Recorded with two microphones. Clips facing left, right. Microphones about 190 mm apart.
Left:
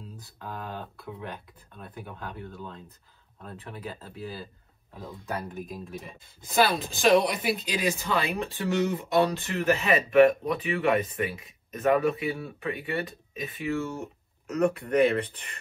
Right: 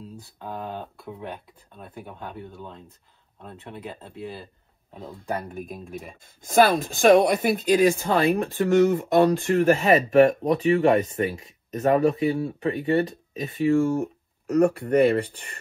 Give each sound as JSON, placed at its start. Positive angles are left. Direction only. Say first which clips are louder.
{"t": 0.4, "sound": "speech", "louder": "right 4 dB", "side_deg": -20}
{"t": 3.4, "sound": "speech", "louder": "right 2 dB", "side_deg": -25}
{"t": 4.9, "sound": "speech", "louder": "right 2 dB", "side_deg": -30}
{"t": 6.4, "sound": "speech", "louder": "right 6 dB", "side_deg": -50}
{"t": 14.5, "sound": "speech", "louder": "right 5 dB", "side_deg": -35}